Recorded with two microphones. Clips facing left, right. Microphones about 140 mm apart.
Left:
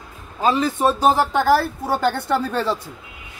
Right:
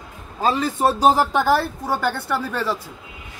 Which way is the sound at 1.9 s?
20° left (ahead or behind).